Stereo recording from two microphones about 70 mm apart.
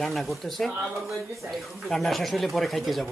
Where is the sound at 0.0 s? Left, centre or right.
Centre.